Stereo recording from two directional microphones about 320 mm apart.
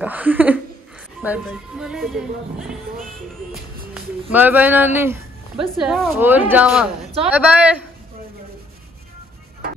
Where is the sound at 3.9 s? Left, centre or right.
Centre.